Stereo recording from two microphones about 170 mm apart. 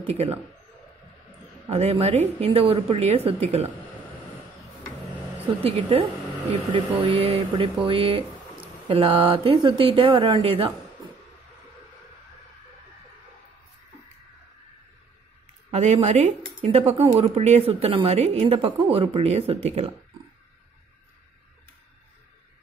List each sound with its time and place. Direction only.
0.0 s speech: 35° right (ahead or behind)
1.7 s speech: 40° right (ahead or behind)
6.5 s speech: 35° right (ahead or behind)
15.7 s speech: 40° right (ahead or behind)